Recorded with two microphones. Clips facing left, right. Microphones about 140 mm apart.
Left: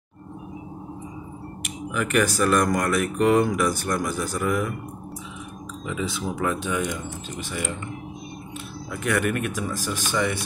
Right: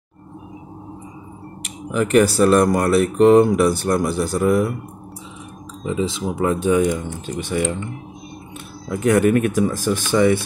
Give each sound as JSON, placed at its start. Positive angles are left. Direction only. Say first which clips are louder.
{"t": 1.9, "sound": "speech", "louder": "right 7 dB", "side_deg": -30}
{"t": 5.9, "sound": "speech", "louder": "right 6 dB", "side_deg": -25}
{"t": 6.5, "sound": "speech", "louder": "right 10 dB", "side_deg": -40}
{"t": 6.8, "sound": "speech", "louder": "right 9 dB", "side_deg": -60}
{"t": 8.9, "sound": "speech", "louder": "right 9 dB", "side_deg": -35}